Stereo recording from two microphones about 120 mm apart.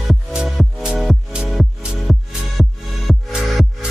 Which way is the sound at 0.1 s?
Centre (ahead or behind).